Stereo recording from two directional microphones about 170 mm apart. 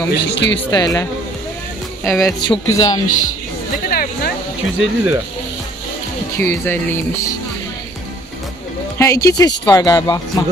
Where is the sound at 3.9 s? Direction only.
65° left (ahead or behind).